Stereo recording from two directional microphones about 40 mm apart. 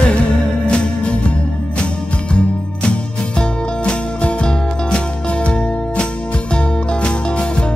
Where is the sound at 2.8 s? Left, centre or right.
Left.